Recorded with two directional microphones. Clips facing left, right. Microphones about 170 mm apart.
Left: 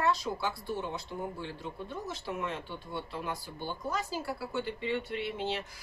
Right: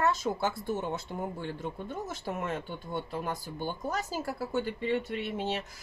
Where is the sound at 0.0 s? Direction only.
45° right (ahead or behind).